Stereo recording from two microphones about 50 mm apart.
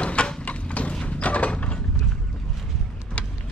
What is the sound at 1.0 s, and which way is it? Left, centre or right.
Mechanisms, left.